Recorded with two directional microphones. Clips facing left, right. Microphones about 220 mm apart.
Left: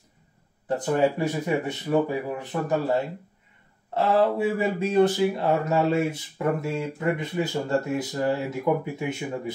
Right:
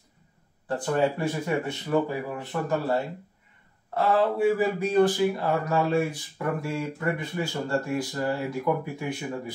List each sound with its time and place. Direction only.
0.7 s speech: 15° left (ahead or behind)